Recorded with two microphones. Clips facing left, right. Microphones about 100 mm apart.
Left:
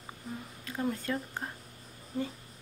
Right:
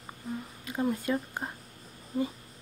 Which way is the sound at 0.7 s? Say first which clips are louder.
Right 4 dB; 15° right (ahead or behind).